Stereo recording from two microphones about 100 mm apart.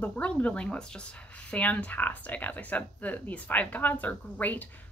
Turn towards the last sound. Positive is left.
turn(degrees=15)  # may be behind; listen again after turning